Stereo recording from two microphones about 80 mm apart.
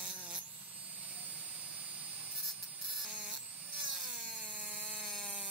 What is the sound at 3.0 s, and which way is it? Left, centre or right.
Electric toothbrush, centre.